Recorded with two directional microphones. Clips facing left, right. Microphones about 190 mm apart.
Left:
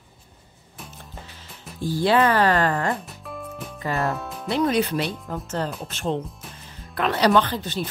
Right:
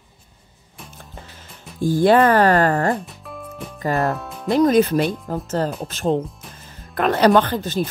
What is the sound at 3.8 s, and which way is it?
Speech, 40° right (ahead or behind).